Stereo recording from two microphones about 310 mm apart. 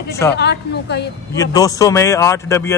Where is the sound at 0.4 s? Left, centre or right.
Left.